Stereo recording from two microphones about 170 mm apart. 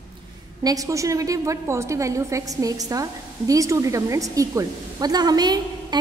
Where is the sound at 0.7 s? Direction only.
20° right (ahead or behind).